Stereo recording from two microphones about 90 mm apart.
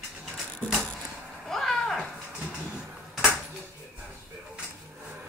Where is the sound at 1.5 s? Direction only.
5° left (ahead or behind).